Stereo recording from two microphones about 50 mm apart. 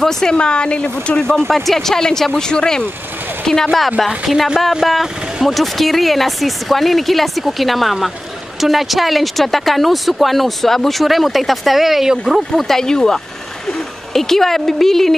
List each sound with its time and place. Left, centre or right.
0.0 s speech: centre
4.8 s speech: centre
12.5 s speech: centre